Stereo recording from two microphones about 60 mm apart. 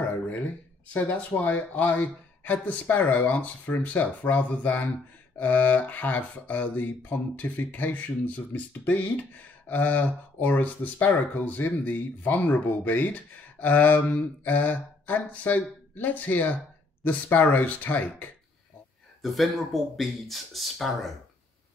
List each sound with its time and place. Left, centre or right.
0.0 s a sound: left
0.9 s speech: left
19.2 s speech: centre